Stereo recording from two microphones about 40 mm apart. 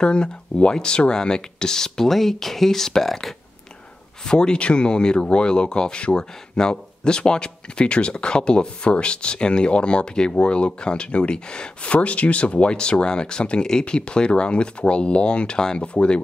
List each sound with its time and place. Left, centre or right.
0.0 s speech: left; by 3.3 s centre
4.2 s speech: left